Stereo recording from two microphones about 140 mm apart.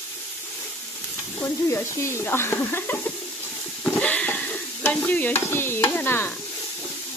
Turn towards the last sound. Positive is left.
turn(degrees=15)  # may be behind; listen again after turning